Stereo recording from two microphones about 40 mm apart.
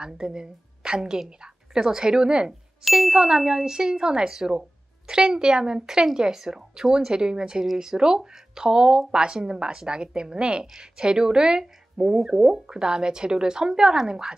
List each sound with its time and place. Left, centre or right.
0.0 s a woman's voice: centre
2.8 s speech: centre